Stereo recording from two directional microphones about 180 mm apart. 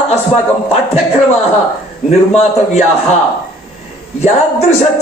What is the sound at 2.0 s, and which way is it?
Speech, 40° left (ahead or behind).